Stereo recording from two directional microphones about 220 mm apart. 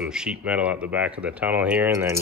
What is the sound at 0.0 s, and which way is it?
Speech, 5° right (ahead or behind).